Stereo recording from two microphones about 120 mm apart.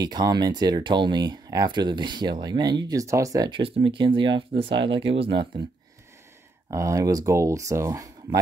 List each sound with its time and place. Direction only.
0.0 s speech: 35° right (ahead or behind)
6.7 s speech: 25° right (ahead or behind)